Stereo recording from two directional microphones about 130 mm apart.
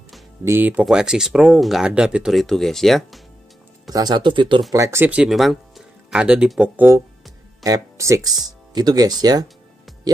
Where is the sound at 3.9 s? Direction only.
35° right (ahead or behind).